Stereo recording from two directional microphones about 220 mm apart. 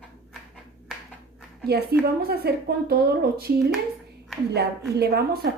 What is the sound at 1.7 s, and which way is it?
A woman's voice, 45° right (ahead or behind).